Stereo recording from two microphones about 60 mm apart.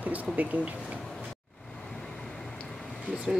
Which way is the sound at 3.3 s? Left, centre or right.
Centre.